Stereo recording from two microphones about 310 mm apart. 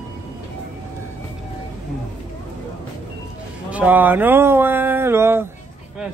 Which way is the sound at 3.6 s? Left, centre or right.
Centre.